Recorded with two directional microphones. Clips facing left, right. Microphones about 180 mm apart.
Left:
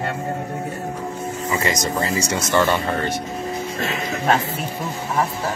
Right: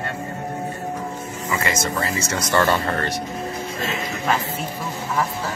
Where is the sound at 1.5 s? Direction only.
20° left (ahead or behind).